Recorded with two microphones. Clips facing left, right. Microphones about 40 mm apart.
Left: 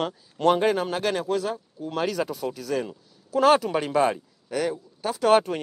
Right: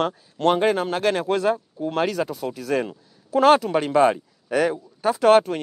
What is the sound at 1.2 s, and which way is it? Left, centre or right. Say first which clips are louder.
Speech: right 5 dB; right.